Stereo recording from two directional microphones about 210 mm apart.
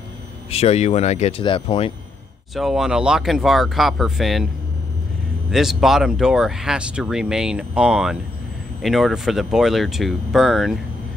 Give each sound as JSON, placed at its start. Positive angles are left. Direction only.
{"t": 0.5, "sound": "speech", "side_deg": 30}
{"t": 2.5, "sound": "speech", "side_deg": 0}
{"t": 5.5, "sound": "speech", "side_deg": 0}